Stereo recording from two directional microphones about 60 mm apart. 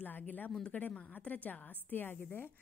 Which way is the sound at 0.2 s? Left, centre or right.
Left.